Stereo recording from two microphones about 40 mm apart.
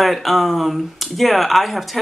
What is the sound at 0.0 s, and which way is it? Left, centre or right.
Speech, centre.